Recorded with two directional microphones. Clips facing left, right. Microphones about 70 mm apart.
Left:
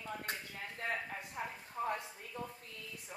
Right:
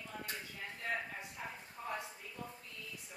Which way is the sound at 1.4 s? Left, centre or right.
Left.